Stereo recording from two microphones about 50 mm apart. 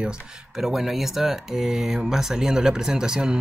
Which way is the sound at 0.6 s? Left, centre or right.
Centre.